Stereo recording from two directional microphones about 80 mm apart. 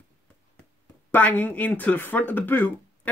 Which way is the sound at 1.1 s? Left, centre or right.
Left.